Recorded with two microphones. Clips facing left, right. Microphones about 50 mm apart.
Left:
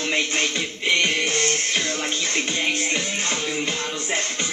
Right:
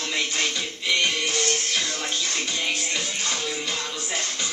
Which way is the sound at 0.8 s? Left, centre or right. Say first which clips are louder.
Left 3 dB; left.